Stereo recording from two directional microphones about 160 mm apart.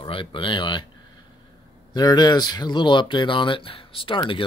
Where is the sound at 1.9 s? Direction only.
25° left (ahead or behind).